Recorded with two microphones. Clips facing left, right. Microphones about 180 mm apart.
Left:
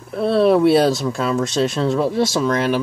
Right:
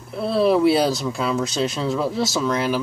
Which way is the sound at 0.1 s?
Centre (ahead or behind).